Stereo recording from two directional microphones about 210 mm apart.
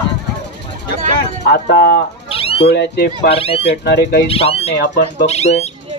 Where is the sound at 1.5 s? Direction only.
45° left (ahead or behind).